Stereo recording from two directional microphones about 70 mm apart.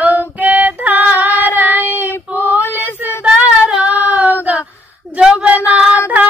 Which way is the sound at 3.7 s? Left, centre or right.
Right.